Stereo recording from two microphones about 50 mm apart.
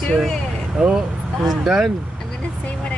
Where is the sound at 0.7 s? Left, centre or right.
Right.